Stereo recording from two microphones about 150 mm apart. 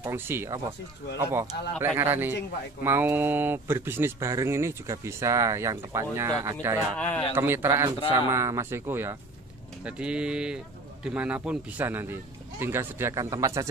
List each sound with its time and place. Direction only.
0.0 s speech: 15° right (ahead or behind)
7.0 s speech: 10° left (ahead or behind)
7.3 s speech: 15° right (ahead or behind)